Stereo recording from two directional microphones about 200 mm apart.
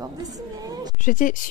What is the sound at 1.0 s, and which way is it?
Speech, 40° left (ahead or behind).